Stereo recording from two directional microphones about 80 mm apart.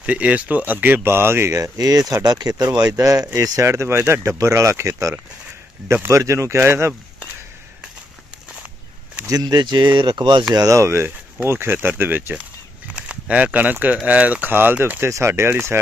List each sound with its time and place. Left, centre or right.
0.0 s speech: centre; by 2.7 s right
2.9 s speech: right
6.0 s speech: right
9.2 s speech: right
10.7 s speech: right
15.0 s speech: right